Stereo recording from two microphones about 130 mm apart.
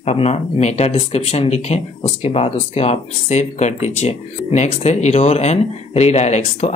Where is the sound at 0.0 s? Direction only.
55° left (ahead or behind).